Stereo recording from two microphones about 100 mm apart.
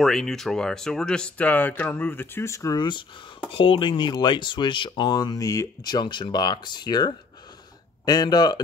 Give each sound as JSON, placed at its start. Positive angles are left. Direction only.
{"t": 0.0, "sound": "speech", "side_deg": 5}
{"t": 2.8, "sound": "speech", "side_deg": 55}